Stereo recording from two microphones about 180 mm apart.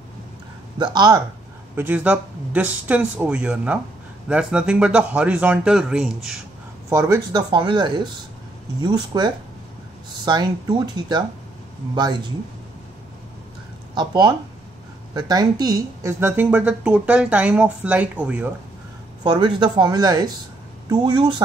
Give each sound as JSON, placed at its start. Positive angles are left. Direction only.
{"t": 0.7, "sound": "speech", "side_deg": -25}
{"t": 1.8, "sound": "a woman's voice", "side_deg": -10}
{"t": 6.9, "sound": "speech", "side_deg": -20}
{"t": 13.9, "sound": "a woman's voice", "side_deg": -25}
{"t": 19.2, "sound": "speech", "side_deg": -25}